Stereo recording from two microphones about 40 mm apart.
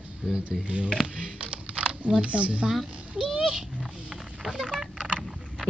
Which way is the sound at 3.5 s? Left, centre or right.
Centre.